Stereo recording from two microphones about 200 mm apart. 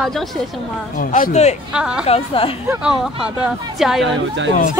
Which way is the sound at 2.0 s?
30° left (ahead or behind).